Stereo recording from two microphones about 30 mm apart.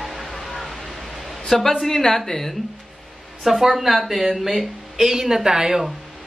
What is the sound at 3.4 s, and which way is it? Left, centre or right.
Speech, centre.